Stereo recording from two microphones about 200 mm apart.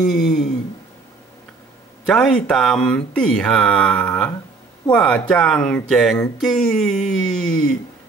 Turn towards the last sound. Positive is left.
turn(degrees=5)  # may be behind; listen again after turning